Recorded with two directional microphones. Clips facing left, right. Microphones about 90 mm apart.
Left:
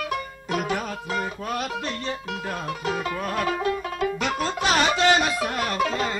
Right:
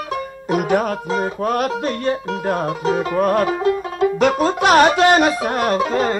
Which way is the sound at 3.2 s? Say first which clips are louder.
Right 9 dB; 45° right (ahead or behind).